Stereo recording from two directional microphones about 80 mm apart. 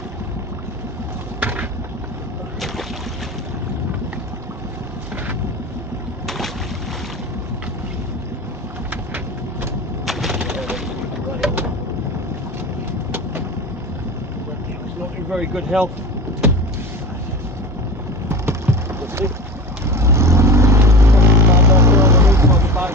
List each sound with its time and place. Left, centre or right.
1.4 s a sound: centre
6.2 s boat: centre
8.9 s vehicle: right
10.0 s bird: centre
15.3 s speech: centre
18.3 s a sound: right
19.9 s vehicle: right